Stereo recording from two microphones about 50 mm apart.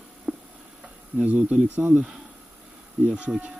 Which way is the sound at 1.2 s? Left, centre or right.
Right.